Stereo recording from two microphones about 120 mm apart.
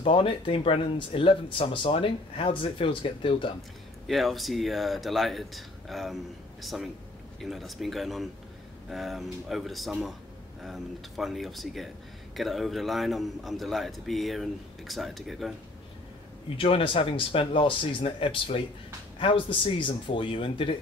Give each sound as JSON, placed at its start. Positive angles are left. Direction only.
{"t": 0.0, "sound": "speech", "side_deg": 45}
{"t": 4.1, "sound": "a man's voice", "side_deg": 0}
{"t": 16.5, "sound": "speech", "side_deg": 50}